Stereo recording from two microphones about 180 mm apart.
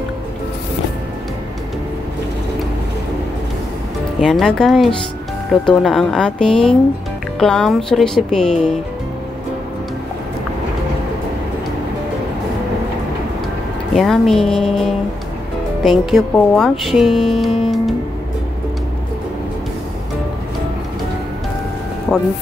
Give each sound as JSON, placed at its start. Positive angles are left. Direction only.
{"t": 4.2, "sound": "speech", "side_deg": 0}
{"t": 13.9, "sound": "speech", "side_deg": 0}